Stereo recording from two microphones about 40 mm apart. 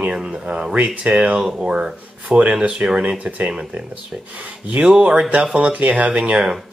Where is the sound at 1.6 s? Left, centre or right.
Right.